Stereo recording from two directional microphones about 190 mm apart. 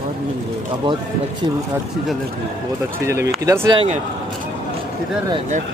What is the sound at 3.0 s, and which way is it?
Speech, 15° right (ahead or behind).